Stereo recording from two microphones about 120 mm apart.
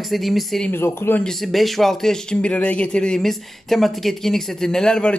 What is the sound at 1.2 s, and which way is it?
Speech, 5° left (ahead or behind).